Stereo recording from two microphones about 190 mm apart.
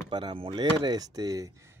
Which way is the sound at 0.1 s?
25° right (ahead or behind).